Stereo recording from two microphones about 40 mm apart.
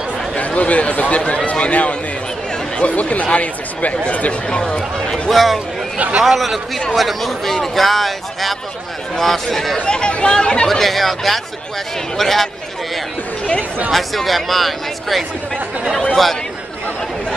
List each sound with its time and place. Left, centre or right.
0.4 s a man's voice: left
4.5 s speech: centre
5.3 s a man's voice: centre
5.9 s a man's voice: right
6.2 s a man's voice: centre
9.8 s speech: left
10.7 s a man's voice: centre
13.9 s a man's voice: centre